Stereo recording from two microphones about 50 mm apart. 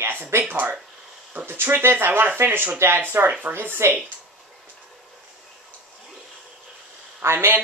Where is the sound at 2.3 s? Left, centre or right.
Right.